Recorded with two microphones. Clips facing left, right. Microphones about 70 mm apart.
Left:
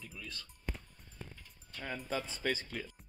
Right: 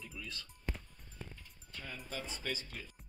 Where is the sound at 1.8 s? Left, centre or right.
Left.